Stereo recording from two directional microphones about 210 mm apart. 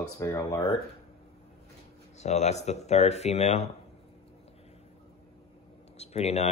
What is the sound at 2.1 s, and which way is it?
Speech, 35° left (ahead or behind).